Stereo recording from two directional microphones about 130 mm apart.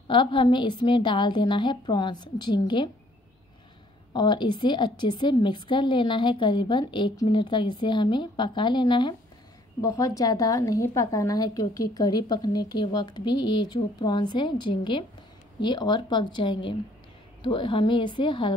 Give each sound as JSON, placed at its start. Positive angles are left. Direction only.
{"t": 0.1, "sound": "a woman's voice", "side_deg": 40}
{"t": 4.1, "sound": "a woman's voice", "side_deg": 35}
{"t": 9.8, "sound": "a woman's voice", "side_deg": 25}